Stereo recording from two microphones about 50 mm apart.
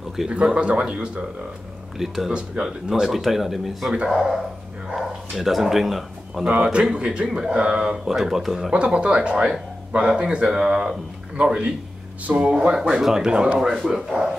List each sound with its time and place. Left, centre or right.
0.3 s speech: centre
2.0 s speech: centre
2.3 s speech: right
2.9 s speech: centre
5.4 s speech: centre
6.4 s speech: right; by 8.7 s centre
8.7 s speech: right
13.6 s speech: centre